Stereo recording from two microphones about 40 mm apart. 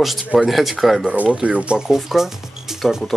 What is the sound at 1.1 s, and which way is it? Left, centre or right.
Speech, right.